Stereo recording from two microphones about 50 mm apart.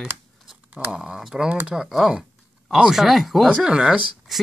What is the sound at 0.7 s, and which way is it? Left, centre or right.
Speech, centre.